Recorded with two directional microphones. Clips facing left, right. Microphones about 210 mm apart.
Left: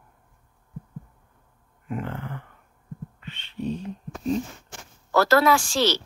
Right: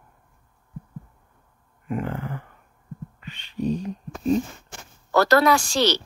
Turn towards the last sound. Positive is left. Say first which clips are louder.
# right 1 dB
turn(degrees=0)  # may be behind; listen again after turning